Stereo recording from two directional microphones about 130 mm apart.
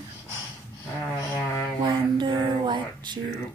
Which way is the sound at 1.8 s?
35° right (ahead or behind).